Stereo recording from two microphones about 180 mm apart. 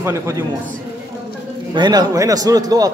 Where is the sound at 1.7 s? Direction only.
25° right (ahead or behind).